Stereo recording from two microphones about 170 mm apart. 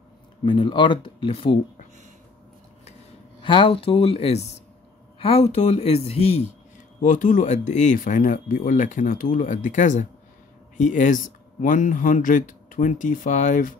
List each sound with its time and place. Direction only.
0.4 s speech: 30° left (ahead or behind)
3.4 s a man's voice: 30° left (ahead or behind)
7.0 s speech: 50° left (ahead or behind)